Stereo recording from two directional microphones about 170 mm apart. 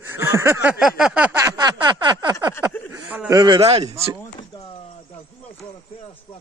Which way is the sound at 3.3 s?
25° right (ahead or behind).